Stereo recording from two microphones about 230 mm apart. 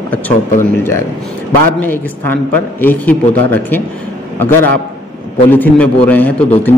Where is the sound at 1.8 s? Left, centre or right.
Centre.